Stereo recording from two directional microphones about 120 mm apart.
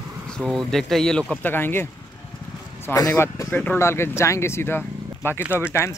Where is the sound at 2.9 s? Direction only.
25° left (ahead or behind).